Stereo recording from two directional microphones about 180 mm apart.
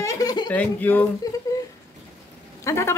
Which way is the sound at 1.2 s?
20° left (ahead or behind).